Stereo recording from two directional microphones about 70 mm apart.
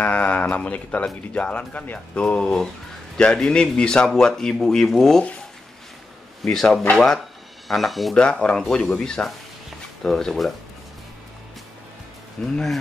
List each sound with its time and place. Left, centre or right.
0.0 s speech: left; by 5.2 s centre
6.4 s speech: centre
8.2 s speech: centre
9.7 s a sound: centre
12.4 s speech: centre